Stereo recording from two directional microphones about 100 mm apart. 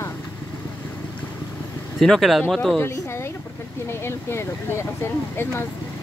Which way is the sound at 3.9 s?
25° left (ahead or behind).